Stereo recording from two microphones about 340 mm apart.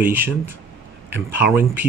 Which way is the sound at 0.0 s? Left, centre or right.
Centre.